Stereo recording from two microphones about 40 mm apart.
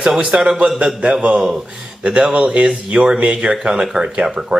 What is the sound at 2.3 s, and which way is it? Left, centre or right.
Speech, right.